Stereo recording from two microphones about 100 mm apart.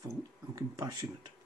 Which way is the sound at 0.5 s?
35° right (ahead or behind).